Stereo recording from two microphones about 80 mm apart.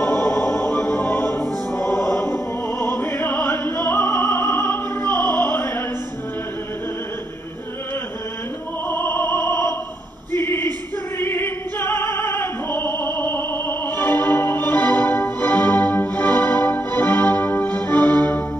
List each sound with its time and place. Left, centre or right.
0.0 s music: centre
8.8 s opera: left
10.3 s a sound: left
11.1 s opera: left